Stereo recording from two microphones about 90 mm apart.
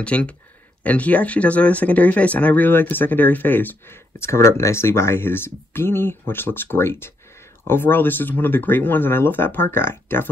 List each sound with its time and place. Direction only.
0.0 s speech: 15° left (ahead or behind)